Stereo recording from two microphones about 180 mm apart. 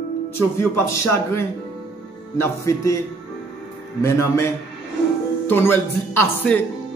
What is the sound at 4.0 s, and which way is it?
Speech, 15° left (ahead or behind).